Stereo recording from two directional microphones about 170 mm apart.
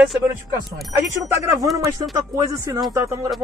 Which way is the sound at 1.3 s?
15° right (ahead or behind).